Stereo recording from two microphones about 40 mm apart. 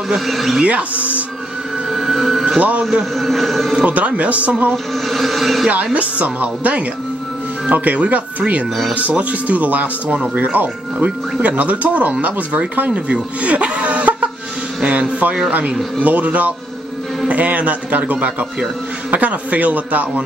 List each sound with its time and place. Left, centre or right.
0.3 s speech: centre
0.7 s speech: right
1.9 s music: centre
2.8 s speech: centre
3.2 s speech: centre
3.8 s speech: right
5.0 s speech: centre
5.9 s speech: right